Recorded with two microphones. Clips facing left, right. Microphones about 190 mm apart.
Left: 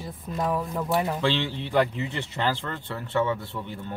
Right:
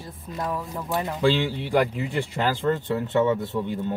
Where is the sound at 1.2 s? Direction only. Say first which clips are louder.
Right 4 dB; 10° right (ahead or behind).